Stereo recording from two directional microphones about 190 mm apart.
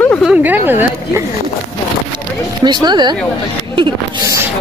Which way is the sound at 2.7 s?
25° right (ahead or behind).